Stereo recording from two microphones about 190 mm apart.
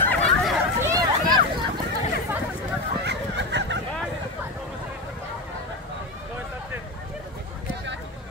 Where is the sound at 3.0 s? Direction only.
65° right (ahead or behind).